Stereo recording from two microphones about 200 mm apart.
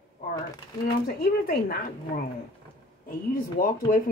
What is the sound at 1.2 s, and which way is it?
Speech, 50° left (ahead or behind).